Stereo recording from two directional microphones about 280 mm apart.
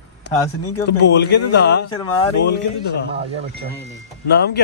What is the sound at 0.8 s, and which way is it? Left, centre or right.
A man's voice, left.